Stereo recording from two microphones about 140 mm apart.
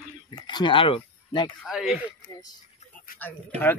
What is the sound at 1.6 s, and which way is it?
Speech, 5° right (ahead or behind).